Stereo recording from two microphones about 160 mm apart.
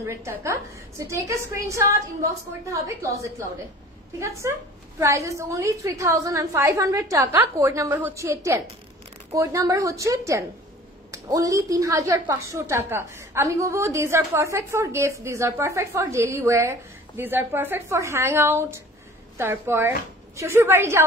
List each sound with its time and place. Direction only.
0.0 s a woman's voice: 15° right (ahead or behind)